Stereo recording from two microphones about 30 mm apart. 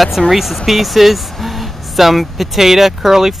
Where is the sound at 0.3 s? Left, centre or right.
Centre.